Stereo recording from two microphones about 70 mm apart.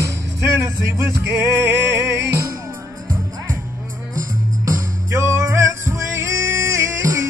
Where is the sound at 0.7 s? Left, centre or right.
Right.